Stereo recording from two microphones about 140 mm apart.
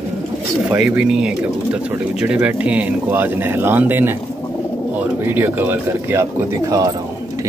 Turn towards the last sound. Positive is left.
turn(degrees=-25)  # may be behind; listen again after turning